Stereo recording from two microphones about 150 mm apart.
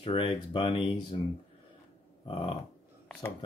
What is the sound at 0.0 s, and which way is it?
Speech, 35° left (ahead or behind).